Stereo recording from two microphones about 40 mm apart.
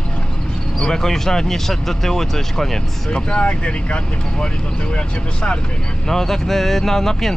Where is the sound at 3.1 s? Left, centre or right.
Left.